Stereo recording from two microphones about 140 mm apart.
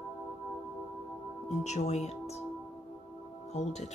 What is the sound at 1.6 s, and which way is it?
Speech, 55° left (ahead or behind).